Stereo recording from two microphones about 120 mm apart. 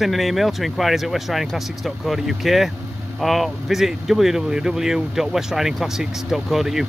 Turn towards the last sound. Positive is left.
turn(degrees=0)  # may be behind; listen again after turning